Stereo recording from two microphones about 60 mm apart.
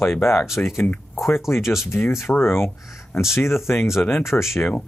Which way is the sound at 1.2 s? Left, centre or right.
Centre.